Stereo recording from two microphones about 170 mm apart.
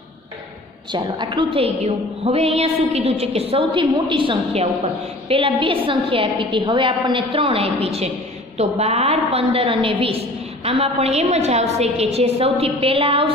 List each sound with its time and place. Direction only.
0.9 s a woman's voice: 25° right (ahead or behind)